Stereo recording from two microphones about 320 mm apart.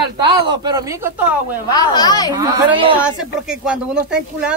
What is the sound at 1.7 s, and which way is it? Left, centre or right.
Speech, centre.